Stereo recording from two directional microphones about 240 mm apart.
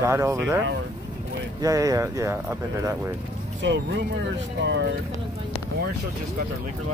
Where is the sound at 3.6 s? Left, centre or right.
Right.